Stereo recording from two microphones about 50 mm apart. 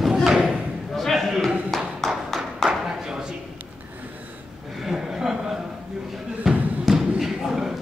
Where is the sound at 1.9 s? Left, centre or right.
Centre.